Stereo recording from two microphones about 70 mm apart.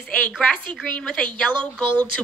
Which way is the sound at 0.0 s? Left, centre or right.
Centre.